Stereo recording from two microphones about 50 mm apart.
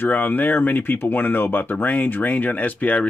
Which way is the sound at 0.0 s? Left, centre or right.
Left.